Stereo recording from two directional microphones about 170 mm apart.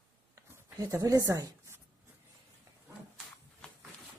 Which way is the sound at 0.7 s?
20° right (ahead or behind).